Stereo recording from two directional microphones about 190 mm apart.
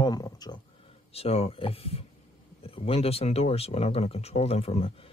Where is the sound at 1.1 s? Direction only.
30° left (ahead or behind).